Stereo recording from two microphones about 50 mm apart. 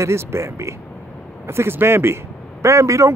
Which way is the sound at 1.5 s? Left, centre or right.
Right.